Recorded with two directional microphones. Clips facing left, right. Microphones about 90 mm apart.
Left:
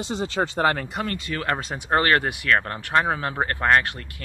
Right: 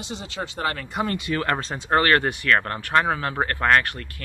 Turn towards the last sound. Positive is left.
turn(degrees=20)  # may be behind; listen again after turning